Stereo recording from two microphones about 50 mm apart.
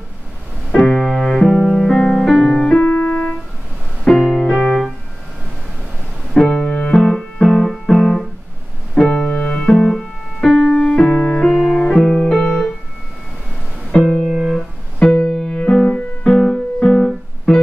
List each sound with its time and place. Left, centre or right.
0.7 s piano: centre
1.4 s music: centre
2.8 s keyboard: left
4.1 s piano: centre
4.4 s keyboard: centre
6.3 s music: centre
10.7 s music: centre
11.5 s music: centre
12.3 s keyboard: centre
13.9 s music: centre
14.3 s music: centre
15.0 s piano: centre
15.7 s music: centre